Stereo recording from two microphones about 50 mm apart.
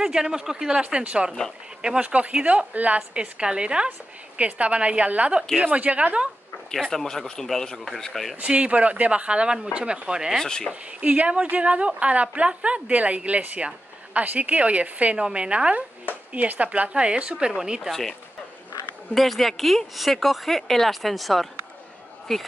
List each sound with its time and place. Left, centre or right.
0.0 s a woman's voice: centre
6.7 s speech: centre
8.4 s a woman's voice: right
10.3 s speech: centre
10.7 s a woman's voice: right
19.1 s speech: centre